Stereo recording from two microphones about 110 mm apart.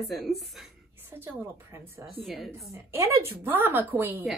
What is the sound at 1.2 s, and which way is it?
Speech, 20° right (ahead or behind).